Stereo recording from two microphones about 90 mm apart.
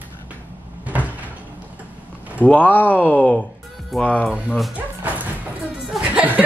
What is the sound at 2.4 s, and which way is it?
Speech, 20° left (ahead or behind).